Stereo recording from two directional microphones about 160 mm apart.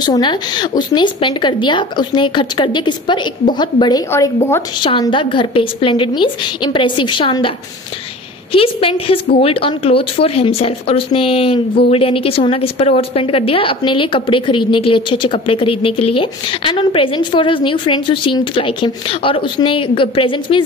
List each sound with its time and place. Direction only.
0.0 s speech: 25° left (ahead or behind)
4.1 s a woman's voice: 15° left (ahead or behind)
4.8 s a woman's voice: 30° left (ahead or behind)